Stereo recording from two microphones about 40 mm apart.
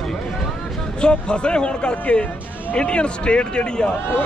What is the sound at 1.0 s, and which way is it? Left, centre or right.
Speech, left.